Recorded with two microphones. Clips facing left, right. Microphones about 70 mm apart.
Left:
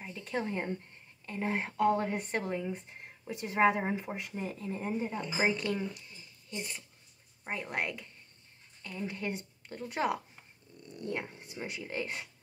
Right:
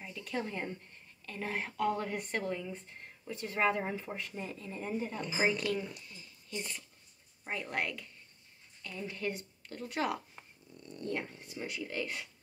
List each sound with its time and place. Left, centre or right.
0.0 s a sound: left
1.2 s speech: left
2.7 s speech: centre
6.0 s a sound: centre
7.5 s speech: left
10.8 s dog: centre
11.1 s speech: left